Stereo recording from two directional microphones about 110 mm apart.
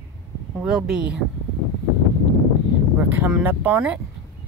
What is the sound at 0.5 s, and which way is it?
Speech, 5° right (ahead or behind).